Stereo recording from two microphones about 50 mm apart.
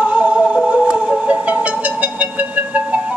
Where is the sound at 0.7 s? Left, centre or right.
Centre.